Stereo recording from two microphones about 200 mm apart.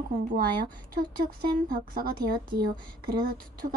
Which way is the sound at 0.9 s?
45° right (ahead or behind).